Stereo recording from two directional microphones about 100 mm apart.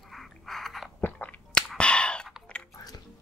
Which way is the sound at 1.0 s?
15° left (ahead or behind).